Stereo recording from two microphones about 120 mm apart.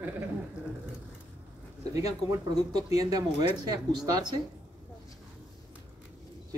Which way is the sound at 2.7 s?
35° right (ahead or behind).